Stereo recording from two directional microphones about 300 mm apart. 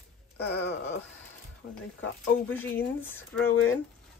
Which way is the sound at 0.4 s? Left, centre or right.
Left.